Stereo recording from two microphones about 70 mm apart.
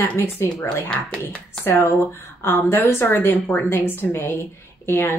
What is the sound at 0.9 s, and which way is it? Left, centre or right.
Speech, centre.